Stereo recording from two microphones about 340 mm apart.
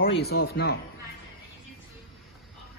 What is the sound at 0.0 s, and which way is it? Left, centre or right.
Speech, left.